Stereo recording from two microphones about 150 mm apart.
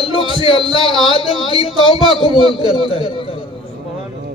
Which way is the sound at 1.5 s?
35° left (ahead or behind).